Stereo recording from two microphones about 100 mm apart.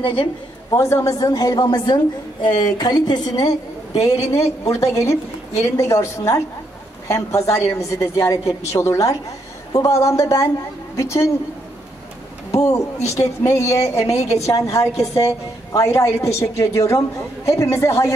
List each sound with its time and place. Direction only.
0.0 s a woman's voice: 55° left (ahead or behind)
0.7 s a woman's voice: 30° left (ahead or behind)
5.0 s a woman's voice: 90° left
5.8 s a woman's voice: 30° left (ahead or behind)
12.4 s speech: 35° left (ahead or behind)
14.1 s a woman's voice: 90° left
14.4 s a woman's voice: 35° left (ahead or behind)